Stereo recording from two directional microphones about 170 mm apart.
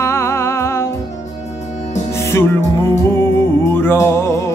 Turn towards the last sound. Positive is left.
turn(degrees=15)  # may be behind; listen again after turning